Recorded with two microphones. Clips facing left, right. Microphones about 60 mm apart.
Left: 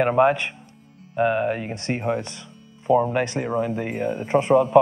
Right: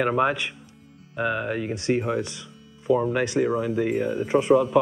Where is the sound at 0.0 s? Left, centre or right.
Centre.